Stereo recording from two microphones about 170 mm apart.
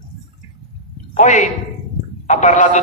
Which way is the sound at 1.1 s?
45° left (ahead or behind).